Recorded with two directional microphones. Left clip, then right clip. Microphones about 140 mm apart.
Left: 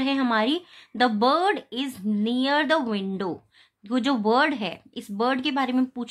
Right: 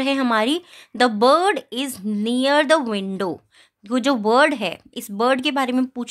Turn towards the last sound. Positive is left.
turn(degrees=-50)  # may be behind; listen again after turning